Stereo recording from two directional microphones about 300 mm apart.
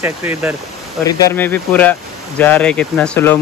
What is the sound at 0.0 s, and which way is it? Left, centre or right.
Speech, centre.